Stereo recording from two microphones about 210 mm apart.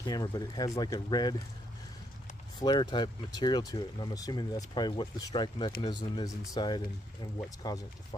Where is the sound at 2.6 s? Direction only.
20° left (ahead or behind).